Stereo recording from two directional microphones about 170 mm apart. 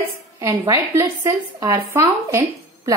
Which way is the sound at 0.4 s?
15° right (ahead or behind).